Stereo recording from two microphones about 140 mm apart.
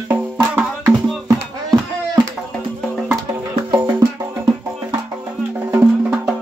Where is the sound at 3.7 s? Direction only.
15° right (ahead or behind).